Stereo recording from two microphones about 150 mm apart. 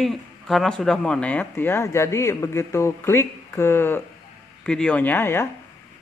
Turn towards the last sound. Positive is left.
turn(degrees=15)  # may be behind; listen again after turning